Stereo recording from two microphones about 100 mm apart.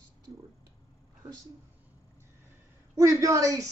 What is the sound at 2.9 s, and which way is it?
Speech, 30° right (ahead or behind).